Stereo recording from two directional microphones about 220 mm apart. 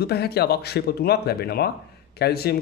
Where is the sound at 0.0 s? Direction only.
45° left (ahead or behind).